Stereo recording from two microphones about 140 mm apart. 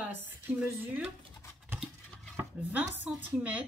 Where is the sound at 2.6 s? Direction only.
10° right (ahead or behind).